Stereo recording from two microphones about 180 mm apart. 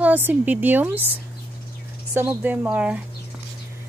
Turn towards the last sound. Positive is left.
turn(degrees=-10)  # may be behind; listen again after turning